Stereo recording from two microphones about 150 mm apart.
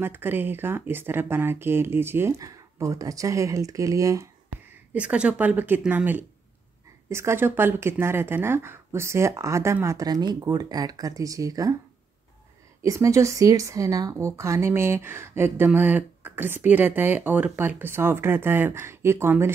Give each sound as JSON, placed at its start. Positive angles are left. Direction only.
{"t": 0.0, "sound": "speech", "side_deg": -15}
{"t": 4.9, "sound": "speech", "side_deg": -10}
{"t": 12.8, "sound": "speech", "side_deg": -20}